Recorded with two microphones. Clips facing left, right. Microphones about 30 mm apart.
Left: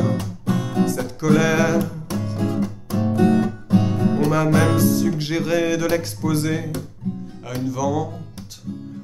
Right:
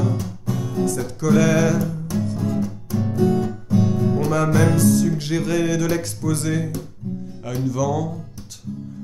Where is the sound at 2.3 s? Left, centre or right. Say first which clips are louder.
Left 1 dB; left.